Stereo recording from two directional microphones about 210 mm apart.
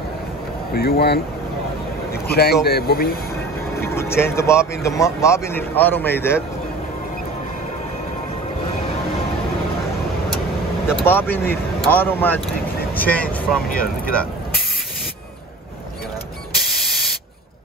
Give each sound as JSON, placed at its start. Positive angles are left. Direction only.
{"t": 0.7, "sound": "speech", "side_deg": 50}
{"t": 2.2, "sound": "speech", "side_deg": 50}
{"t": 3.9, "sound": "speech", "side_deg": 10}
{"t": 11.1, "sound": "speech", "side_deg": 10}
{"t": 13.7, "sound": "speech", "side_deg": 45}
{"t": 16.5, "sound": "spray", "side_deg": 0}